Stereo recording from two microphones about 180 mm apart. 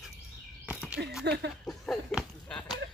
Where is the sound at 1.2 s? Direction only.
65° right (ahead or behind).